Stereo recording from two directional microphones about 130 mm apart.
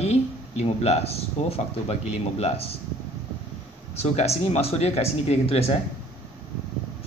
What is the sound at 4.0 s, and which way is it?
A man's voice, 55° left (ahead or behind).